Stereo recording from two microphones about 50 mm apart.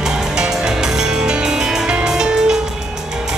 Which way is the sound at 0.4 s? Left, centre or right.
Centre.